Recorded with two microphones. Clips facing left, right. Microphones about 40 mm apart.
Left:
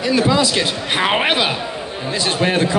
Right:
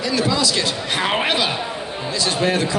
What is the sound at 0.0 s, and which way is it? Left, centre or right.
A man's voice, left.